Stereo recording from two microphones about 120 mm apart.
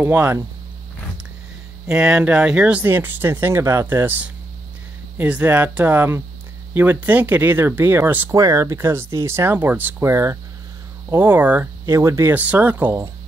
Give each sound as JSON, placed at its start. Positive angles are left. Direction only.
{"t": 0.0, "sound": "speech", "side_deg": -20}
{"t": 1.9, "sound": "speech", "side_deg": -10}
{"t": 11.8, "sound": "speech", "side_deg": -25}